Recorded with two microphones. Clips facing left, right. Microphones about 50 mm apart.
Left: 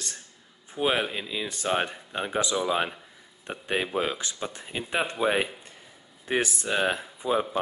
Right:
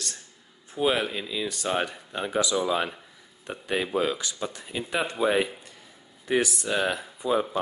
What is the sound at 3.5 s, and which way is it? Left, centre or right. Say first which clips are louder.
Speech: right 1 dB; left.